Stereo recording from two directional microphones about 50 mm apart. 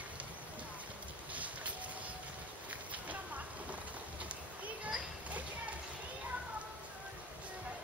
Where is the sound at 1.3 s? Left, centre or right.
Right.